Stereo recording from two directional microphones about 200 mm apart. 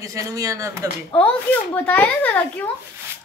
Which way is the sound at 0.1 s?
15° right (ahead or behind).